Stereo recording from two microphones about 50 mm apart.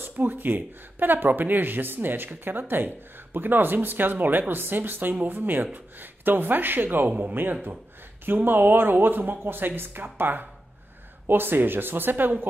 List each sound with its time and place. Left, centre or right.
0.1 s speech: right